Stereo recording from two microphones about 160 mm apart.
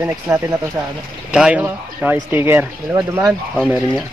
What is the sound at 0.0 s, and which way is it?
Speech, 15° right (ahead or behind).